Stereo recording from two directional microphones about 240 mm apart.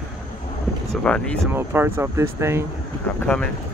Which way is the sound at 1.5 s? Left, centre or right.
Centre.